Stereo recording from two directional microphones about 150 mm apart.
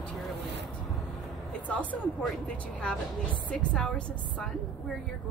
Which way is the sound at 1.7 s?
10° left (ahead or behind).